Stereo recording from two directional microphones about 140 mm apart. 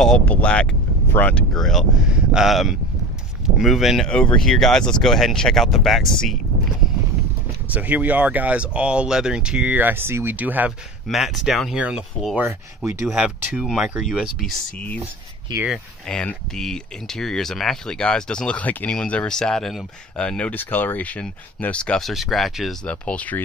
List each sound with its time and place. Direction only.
0.0 s speech: 5° left (ahead or behind)
7.7 s speech: 10° right (ahead or behind)
11.1 s speech: centre (ahead or behind)
12.4 s speech: 15° right (ahead or behind)
13.2 s speech: centre (ahead or behind)